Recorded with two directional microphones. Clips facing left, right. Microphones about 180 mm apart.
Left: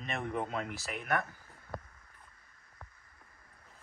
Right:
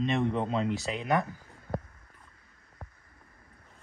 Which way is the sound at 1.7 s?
35° right (ahead or behind).